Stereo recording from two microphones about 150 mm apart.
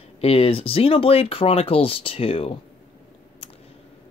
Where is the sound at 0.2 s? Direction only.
40° left (ahead or behind).